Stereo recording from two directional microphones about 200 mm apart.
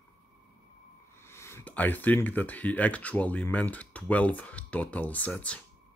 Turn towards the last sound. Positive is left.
turn(degrees=5)  # may be behind; listen again after turning